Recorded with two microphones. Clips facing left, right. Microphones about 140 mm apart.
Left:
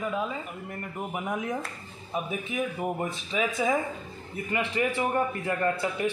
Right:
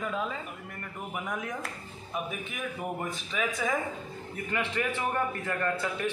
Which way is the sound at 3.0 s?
20° left (ahead or behind).